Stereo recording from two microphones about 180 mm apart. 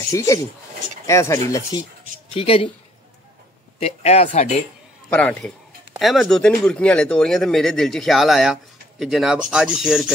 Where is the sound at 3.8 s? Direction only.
35° left (ahead or behind).